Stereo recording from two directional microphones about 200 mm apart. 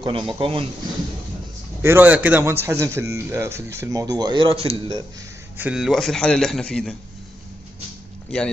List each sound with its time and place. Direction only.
0.0 s speech: 25° right (ahead or behind)
1.8 s a man's voice: 10° right (ahead or behind)
5.6 s a man's voice: 5° right (ahead or behind)